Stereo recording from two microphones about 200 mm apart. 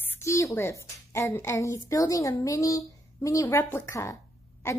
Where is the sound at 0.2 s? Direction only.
15° left (ahead or behind).